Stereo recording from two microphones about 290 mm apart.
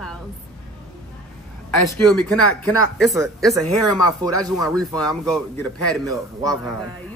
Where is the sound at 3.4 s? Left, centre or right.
Centre.